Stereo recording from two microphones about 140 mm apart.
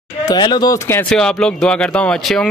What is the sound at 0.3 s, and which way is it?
Speech, 30° left (ahead or behind).